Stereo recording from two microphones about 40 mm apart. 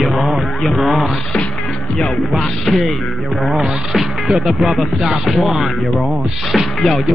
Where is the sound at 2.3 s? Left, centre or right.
Centre.